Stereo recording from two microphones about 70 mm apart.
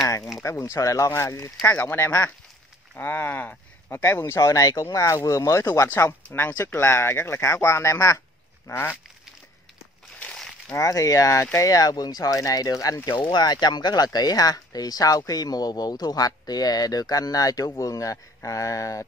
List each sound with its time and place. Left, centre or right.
0.4 s speech: left
1.7 s speech: left
4.0 s speech: left
4.4 s speech: left
5.9 s speech: left
8.6 s a sound: left
10.8 s speech: left
13.3 s speech: left